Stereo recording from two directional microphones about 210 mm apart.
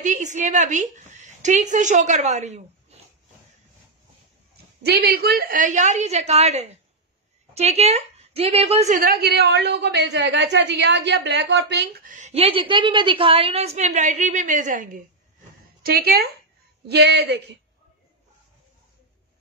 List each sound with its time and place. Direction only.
0.0 s a woman's voice: 35° right (ahead or behind)
4.8 s a woman's voice: 50° right (ahead or behind)